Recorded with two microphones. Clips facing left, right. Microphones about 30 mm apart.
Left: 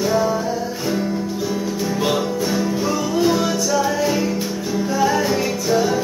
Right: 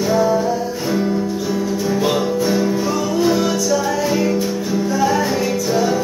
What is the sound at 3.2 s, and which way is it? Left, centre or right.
Music, centre.